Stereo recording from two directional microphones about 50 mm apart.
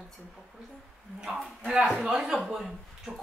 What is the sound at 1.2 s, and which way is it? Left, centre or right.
Speech, centre.